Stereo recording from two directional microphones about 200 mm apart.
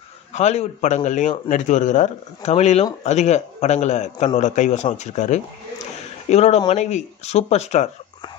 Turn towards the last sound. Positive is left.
turn(degrees=35)  # may be behind; listen again after turning